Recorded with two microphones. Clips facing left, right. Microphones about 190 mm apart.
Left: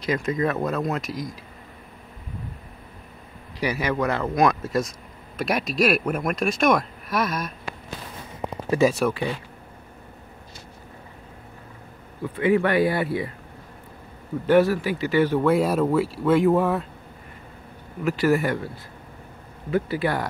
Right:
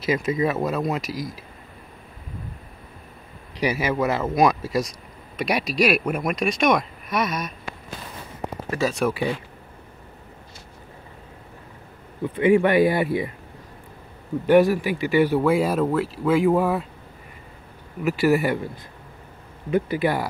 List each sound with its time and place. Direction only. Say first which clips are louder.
0.0 s speech: right 2 dB; 5° right (ahead or behind)
3.5 s speech: right 2 dB; 10° right (ahead or behind)
8.8 s speech: left 2 dB; 5° left (ahead or behind)
12.2 s speech: right 3 dB; 20° right (ahead or behind)
14.4 s speech: right 2 dB; 15° right (ahead or behind)
18.0 s speech: right 1 dB; 10° right (ahead or behind)
19.7 s speech: right 2 dB; 15° right (ahead or behind)